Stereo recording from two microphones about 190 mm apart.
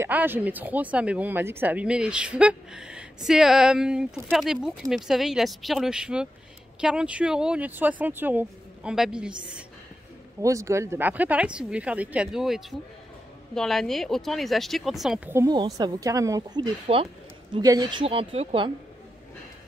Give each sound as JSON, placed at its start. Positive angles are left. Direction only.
{"t": 0.0, "sound": "speech", "side_deg": -10}
{"t": 10.4, "sound": "speech", "side_deg": -15}
{"t": 16.8, "sound": "speech", "side_deg": -30}
{"t": 17.6, "sound": "a woman's voice", "side_deg": -20}